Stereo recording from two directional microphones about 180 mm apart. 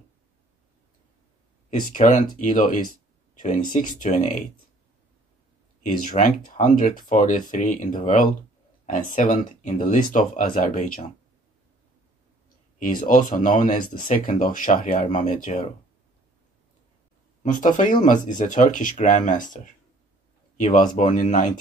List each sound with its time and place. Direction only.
2.0 s speech: 45° left (ahead or behind)
5.8 s speech: 45° left (ahead or behind)
13.0 s speech: 45° left (ahead or behind)
17.4 s speech: 45° left (ahead or behind)